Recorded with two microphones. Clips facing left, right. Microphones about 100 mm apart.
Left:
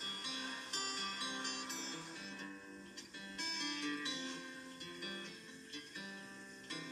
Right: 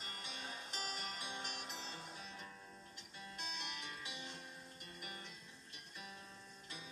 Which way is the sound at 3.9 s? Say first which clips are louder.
Left 7 dB; 55° left (ahead or behind).